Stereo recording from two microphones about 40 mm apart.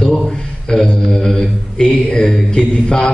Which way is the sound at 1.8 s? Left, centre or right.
Centre.